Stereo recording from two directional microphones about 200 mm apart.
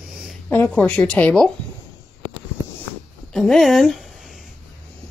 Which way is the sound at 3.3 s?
Centre (ahead or behind).